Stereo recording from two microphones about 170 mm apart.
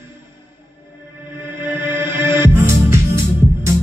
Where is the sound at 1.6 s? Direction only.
10° right (ahead or behind).